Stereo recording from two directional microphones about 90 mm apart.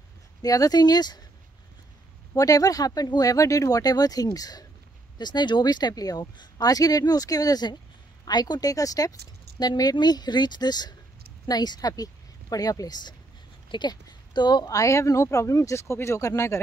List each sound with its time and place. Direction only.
0.4 s speech: 45° left (ahead or behind)
2.3 s speech: 40° left (ahead or behind)
5.2 s speech: 55° left (ahead or behind); by 16.6 s 30° left (ahead or behind)